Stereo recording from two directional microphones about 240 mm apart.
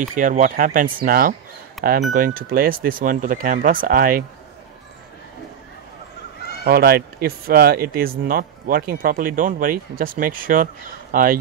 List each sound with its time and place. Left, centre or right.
0.0 s speech: right
6.6 s speech: right